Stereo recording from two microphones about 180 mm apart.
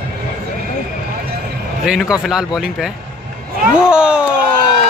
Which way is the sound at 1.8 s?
5° right (ahead or behind).